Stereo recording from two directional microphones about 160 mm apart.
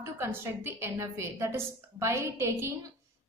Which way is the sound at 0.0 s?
15° right (ahead or behind).